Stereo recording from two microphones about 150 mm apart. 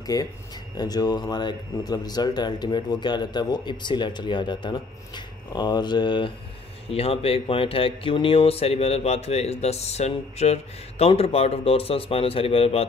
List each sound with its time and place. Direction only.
0.0 s speech: 25° left (ahead or behind); by 12.8 s 40° left (ahead or behind)